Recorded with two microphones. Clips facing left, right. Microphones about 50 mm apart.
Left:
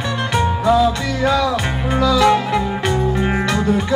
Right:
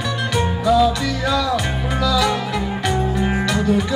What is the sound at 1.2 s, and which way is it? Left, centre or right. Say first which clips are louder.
Music: left 4 dB; left.